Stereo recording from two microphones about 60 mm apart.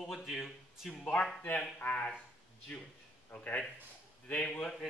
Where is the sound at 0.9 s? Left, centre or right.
Centre.